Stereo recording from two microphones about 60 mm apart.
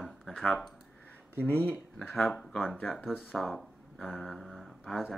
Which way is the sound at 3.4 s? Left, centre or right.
Centre.